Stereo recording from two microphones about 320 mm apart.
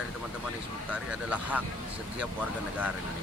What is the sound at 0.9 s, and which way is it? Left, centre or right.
Speech, centre.